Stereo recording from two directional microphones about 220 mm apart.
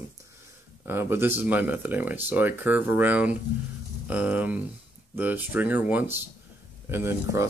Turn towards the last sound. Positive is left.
turn(degrees=-10)  # may be behind; listen again after turning